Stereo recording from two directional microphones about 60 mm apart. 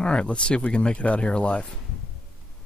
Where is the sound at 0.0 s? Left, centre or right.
Centre.